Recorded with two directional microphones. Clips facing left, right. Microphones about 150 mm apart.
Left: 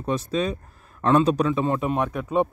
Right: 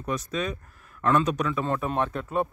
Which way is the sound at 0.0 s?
30° left (ahead or behind).